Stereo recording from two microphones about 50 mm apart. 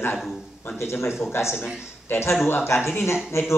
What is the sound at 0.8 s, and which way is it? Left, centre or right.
Speech, left.